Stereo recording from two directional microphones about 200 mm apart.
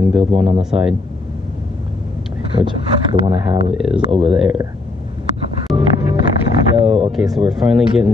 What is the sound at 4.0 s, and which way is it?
Speech, 30° right (ahead or behind).